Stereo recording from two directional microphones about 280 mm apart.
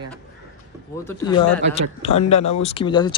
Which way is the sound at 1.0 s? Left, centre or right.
Centre.